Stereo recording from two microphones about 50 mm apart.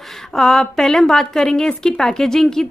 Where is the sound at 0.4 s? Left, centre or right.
Centre.